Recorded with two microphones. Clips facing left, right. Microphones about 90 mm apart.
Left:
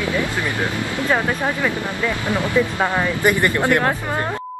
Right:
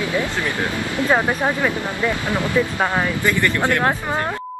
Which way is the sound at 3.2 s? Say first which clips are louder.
Left 4 dB; 20° left (ahead or behind).